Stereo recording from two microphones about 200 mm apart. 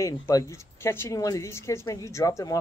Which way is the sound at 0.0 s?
15° left (ahead or behind).